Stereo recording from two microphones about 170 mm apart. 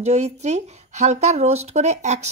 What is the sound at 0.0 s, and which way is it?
Speech, 40° right (ahead or behind).